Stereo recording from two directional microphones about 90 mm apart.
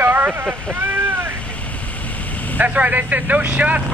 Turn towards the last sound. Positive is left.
turn(degrees=-15)  # may be behind; listen again after turning